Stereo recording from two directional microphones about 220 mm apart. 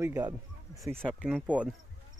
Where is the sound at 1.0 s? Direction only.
Centre (ahead or behind).